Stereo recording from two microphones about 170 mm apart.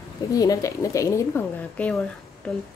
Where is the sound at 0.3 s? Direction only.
20° left (ahead or behind).